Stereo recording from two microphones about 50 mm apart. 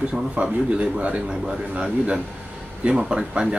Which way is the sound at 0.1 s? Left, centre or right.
Right.